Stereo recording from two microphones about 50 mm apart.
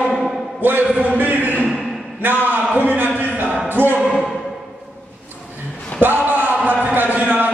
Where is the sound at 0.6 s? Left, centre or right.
Right.